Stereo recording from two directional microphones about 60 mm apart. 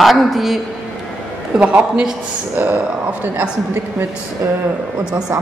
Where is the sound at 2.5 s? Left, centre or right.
Right.